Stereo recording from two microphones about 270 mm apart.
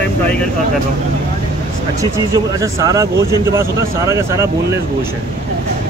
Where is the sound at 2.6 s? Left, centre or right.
Centre.